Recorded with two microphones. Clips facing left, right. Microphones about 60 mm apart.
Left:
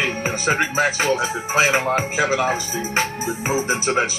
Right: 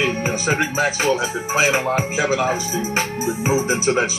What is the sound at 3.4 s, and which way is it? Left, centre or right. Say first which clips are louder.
Speech: right 2 dB; left.